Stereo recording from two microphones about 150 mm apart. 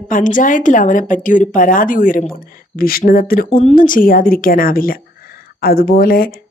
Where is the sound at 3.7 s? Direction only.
65° left (ahead or behind).